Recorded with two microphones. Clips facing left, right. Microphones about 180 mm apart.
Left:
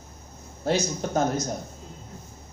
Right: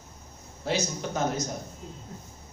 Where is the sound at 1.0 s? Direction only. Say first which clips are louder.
Left 6 dB; 40° left (ahead or behind).